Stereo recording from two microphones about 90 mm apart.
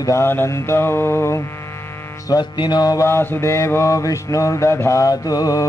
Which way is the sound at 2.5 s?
55° left (ahead or behind).